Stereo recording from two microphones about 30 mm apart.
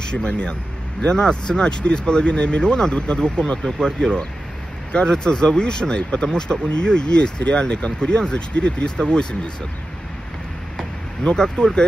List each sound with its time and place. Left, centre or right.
0.1 s speech: left
10.8 s a sound: left
11.5 s speech: left